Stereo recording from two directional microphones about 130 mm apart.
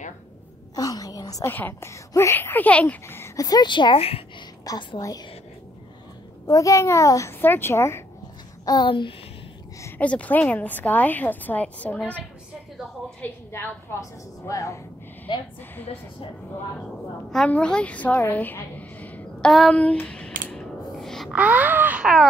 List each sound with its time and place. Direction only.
0.7 s a sound: 30° left (ahead or behind)
1.5 s speech: 15° left (ahead or behind); by 4.2 s 45° left (ahead or behind)
4.6 s speech: 30° left (ahead or behind)
6.4 s speech: 25° left (ahead or behind)
8.6 s a child's voice: 35° left (ahead or behind)
9.8 s a sound: 20° left (ahead or behind)
10.0 s a woman's voice: 10° left (ahead or behind)
13.2 s speech: 20° left (ahead or behind)
15.3 s a child's voice: 40° left (ahead or behind)
17.3 s a woman's voice: 5° left (ahead or behind)
20.4 s a sound: centre (ahead or behind)
21.3 s speech: 10° right (ahead or behind)